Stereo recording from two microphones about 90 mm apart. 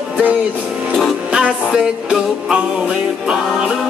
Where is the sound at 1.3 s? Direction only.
5° right (ahead or behind).